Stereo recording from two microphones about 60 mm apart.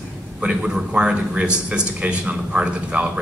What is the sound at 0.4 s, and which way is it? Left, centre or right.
A man's voice, centre.